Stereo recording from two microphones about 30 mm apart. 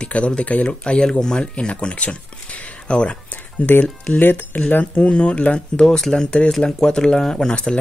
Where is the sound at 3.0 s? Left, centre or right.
Left.